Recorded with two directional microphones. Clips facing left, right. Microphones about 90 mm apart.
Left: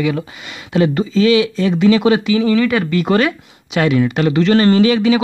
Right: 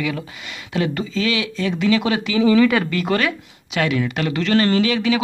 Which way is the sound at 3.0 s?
25° left (ahead or behind).